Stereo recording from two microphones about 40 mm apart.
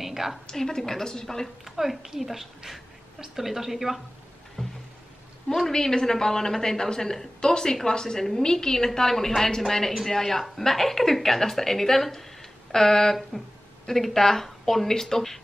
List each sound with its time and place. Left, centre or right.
0.0 s a sound: centre
0.5 s a woman's voice: centre
1.6 s a woman's voice: centre
4.6 s music: centre
5.7 s a woman's voice: centre